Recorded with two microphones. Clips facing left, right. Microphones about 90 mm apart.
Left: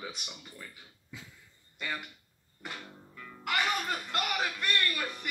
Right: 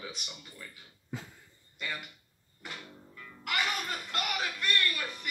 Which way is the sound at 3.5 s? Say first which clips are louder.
Left 2 dB; 25° left (ahead or behind).